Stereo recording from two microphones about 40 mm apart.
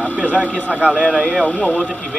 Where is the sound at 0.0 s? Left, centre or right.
Right.